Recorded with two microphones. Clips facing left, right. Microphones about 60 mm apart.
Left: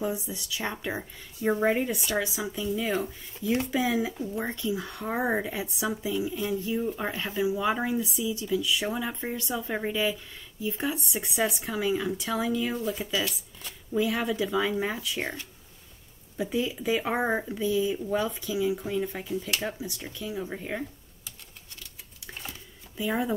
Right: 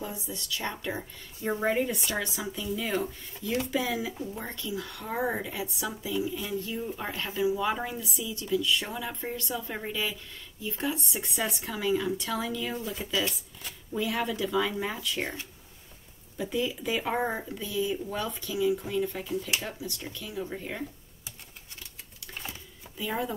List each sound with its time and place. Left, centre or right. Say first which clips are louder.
0.0 s speech: left 6 dB; centre
1.6 s speech: left 2 dB; centre
6.1 s speech: left 2 dB; centre
16.3 s speech: left 1 dB; centre
22.9 s speech: left 3 dB; centre